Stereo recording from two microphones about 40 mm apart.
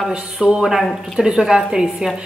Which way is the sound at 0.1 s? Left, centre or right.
Right.